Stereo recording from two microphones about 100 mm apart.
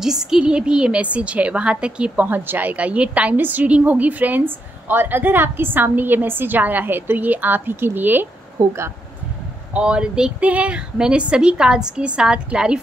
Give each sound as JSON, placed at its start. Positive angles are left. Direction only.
{"t": 0.0, "sound": "a woman's voice", "side_deg": -5}
{"t": 9.8, "sound": "a woman's voice", "side_deg": -10}